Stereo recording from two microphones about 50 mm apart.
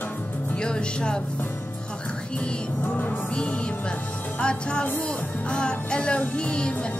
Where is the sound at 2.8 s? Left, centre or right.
Left.